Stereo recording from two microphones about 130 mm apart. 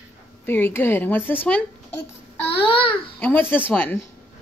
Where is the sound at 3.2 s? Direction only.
15° left (ahead or behind).